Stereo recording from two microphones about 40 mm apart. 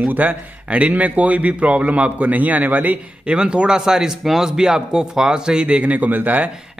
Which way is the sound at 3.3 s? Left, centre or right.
Right.